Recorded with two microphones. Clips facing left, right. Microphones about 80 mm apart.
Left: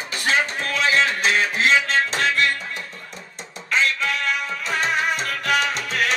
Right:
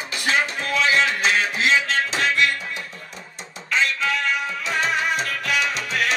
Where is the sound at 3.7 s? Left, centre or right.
Left.